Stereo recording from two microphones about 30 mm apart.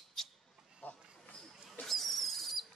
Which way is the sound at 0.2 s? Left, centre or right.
Centre.